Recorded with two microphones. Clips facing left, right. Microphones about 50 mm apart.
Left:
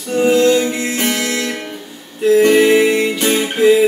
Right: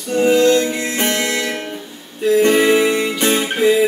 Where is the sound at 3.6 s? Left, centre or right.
Centre.